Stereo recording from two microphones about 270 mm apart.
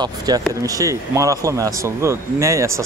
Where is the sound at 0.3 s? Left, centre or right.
Centre.